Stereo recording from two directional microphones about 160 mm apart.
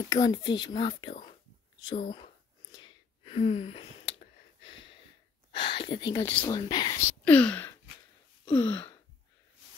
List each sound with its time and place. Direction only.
0.1 s speech: 25° left (ahead or behind)
1.9 s whispering: 30° left (ahead or behind)
5.5 s speech: 30° left (ahead or behind)
7.1 s speech: 10° left (ahead or behind)
8.5 s gasp: 10° left (ahead or behind)